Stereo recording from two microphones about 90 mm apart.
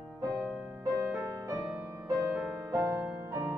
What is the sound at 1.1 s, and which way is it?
Music, 40° right (ahead or behind).